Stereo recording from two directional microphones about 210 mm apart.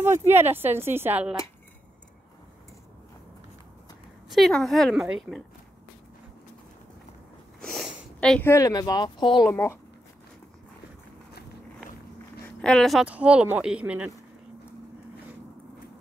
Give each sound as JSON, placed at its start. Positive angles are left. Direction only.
{"t": 0.0, "sound": "speech", "side_deg": -10}
{"t": 4.3, "sound": "speech", "side_deg": 0}
{"t": 7.6, "sound": "speech", "side_deg": 0}
{"t": 12.6, "sound": "speech", "side_deg": 0}